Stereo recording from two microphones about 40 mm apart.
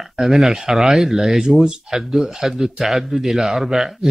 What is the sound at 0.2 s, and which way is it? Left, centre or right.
Speech, centre.